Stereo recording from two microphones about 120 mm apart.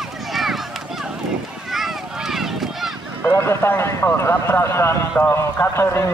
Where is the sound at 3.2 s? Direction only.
20° left (ahead or behind).